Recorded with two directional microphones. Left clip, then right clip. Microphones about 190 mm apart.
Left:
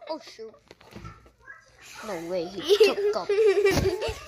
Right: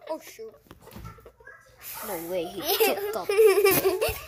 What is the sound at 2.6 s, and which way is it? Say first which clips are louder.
A child's voice: left 5 dB; 30° right (ahead or behind).